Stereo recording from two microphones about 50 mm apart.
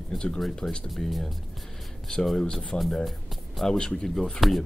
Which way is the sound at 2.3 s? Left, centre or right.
Centre.